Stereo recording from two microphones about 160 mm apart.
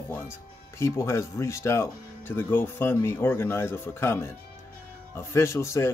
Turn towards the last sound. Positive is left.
turn(degrees=15)  # may be behind; listen again after turning